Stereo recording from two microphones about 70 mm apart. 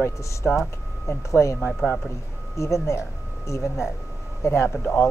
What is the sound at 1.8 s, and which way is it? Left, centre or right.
Speech, centre.